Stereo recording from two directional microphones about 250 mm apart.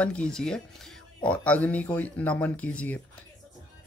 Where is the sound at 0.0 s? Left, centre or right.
Centre.